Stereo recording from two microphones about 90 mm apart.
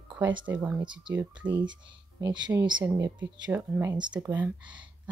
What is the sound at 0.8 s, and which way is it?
Speech, 55° right (ahead or behind).